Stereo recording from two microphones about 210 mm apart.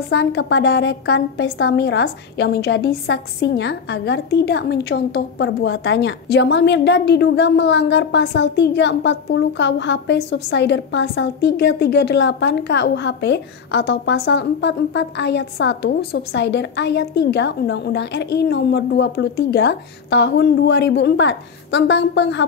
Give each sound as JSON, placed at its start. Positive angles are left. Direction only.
{"t": 0.1, "sound": "a woman's voice", "side_deg": 50}